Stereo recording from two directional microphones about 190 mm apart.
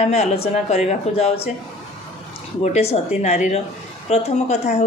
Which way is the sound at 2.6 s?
35° left (ahead or behind).